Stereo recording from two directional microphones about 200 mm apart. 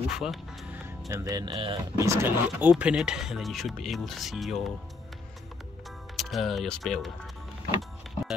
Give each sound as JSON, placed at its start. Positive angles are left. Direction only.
{"t": 0.1, "sound": "music", "side_deg": 0}
{"t": 1.0, "sound": "speech", "side_deg": -15}
{"t": 2.0, "sound": "speech", "side_deg": -10}
{"t": 6.1, "sound": "speech", "side_deg": 0}